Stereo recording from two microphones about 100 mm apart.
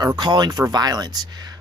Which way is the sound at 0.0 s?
40° right (ahead or behind).